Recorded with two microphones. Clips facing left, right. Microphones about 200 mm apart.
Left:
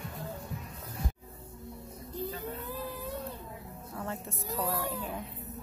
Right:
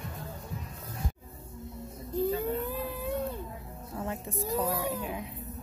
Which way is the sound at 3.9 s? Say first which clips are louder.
Right 3 dB; 20° right (ahead or behind).